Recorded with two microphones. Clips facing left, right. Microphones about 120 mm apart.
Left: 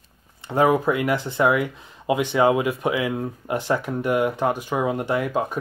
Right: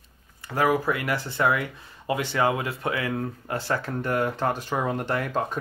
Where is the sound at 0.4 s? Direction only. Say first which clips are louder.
Left 4 dB; 25° left (ahead or behind).